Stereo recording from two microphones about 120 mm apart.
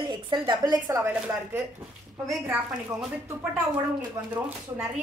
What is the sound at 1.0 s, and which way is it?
Speech, 15° right (ahead or behind).